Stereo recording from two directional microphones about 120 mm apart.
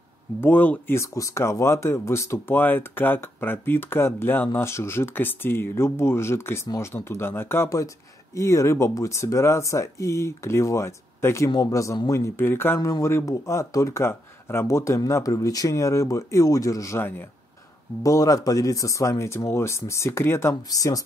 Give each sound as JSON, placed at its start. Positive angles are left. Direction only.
{"t": 0.4, "sound": "speech", "side_deg": 15}